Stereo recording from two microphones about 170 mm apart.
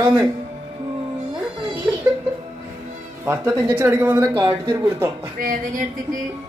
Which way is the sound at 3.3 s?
15° right (ahead or behind).